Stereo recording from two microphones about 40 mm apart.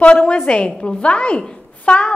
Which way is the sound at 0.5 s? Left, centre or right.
Left.